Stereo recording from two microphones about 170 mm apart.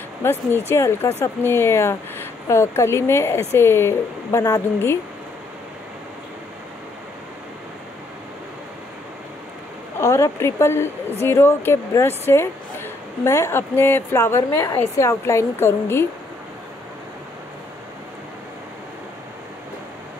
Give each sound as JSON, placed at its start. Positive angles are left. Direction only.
{"t": 0.2, "sound": "speech", "side_deg": 15}
{"t": 9.9, "sound": "speech", "side_deg": 20}